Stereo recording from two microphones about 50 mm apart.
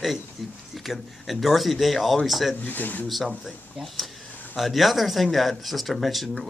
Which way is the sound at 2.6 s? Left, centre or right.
Left.